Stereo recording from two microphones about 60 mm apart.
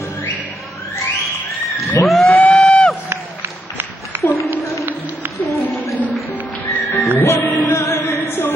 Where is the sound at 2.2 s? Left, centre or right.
Left.